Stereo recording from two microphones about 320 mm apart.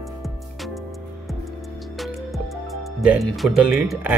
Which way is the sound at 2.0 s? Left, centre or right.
Centre.